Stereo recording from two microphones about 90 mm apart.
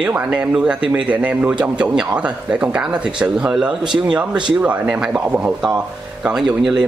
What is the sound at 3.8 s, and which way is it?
Speech, 60° right (ahead or behind).